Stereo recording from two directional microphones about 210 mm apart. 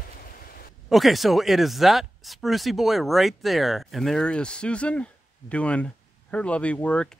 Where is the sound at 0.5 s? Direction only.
45° left (ahead or behind).